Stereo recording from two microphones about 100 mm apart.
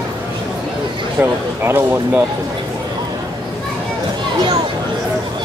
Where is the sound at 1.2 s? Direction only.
25° right (ahead or behind).